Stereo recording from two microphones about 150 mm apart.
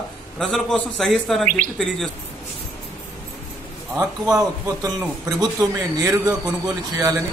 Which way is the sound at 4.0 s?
25° right (ahead or behind).